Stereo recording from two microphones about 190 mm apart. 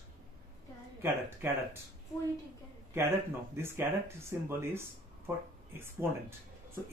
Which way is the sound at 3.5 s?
15° right (ahead or behind).